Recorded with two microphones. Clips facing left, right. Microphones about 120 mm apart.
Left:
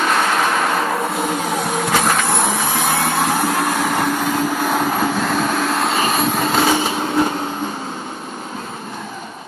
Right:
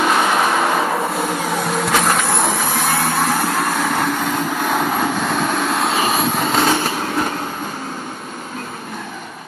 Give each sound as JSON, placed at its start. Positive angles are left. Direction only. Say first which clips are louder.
{"t": 0.0, "sound": "vehicle", "louder": "right 1 dB", "side_deg": -5}